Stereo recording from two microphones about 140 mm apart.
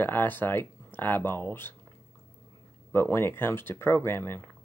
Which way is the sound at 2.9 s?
15° left (ahead or behind).